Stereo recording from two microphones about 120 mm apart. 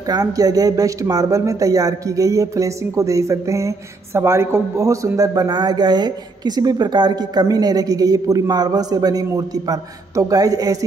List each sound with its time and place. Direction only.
0.0 s speech: 30° right (ahead or behind)